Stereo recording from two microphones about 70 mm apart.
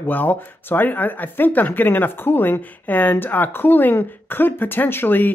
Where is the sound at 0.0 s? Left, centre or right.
Left.